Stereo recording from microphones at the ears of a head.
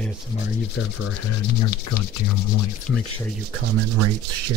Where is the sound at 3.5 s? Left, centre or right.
Right.